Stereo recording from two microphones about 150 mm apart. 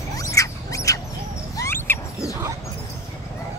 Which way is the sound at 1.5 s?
15° left (ahead or behind).